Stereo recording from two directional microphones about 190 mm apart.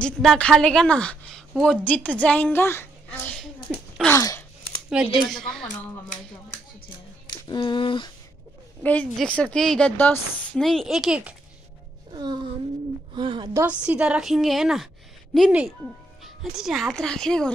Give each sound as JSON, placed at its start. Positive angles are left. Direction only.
{"t": 0.0, "sound": "a woman's voice", "side_deg": 5}
{"t": 3.7, "sound": "a sound", "side_deg": -5}
{"t": 4.0, "sound": "gasp", "side_deg": 15}
{"t": 5.0, "sound": "a woman's voice", "side_deg": -5}
{"t": 7.4, "sound": "speech", "side_deg": 25}
{"t": 8.8, "sound": "a woman's voice", "side_deg": 5}
{"t": 12.1, "sound": "music", "side_deg": -20}
{"t": 13.1, "sound": "a woman's voice", "side_deg": -25}
{"t": 13.6, "sound": "a woman's voice", "side_deg": -5}